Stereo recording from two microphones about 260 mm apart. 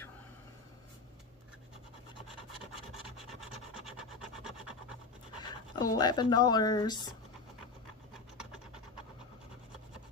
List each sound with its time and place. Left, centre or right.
3.3 s rub: centre
5.4 s speech: centre